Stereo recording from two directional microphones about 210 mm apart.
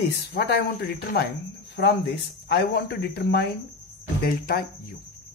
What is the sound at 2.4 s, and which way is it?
Speech, 50° left (ahead or behind).